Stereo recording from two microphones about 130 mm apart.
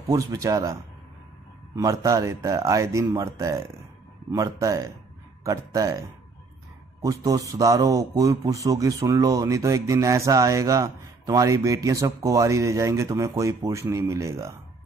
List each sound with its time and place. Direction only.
0.1 s speech: 25° right (ahead or behind)
1.8 s speech: 25° right (ahead or behind)